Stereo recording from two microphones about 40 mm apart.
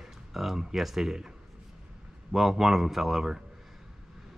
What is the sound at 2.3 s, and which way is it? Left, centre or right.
Speech, centre.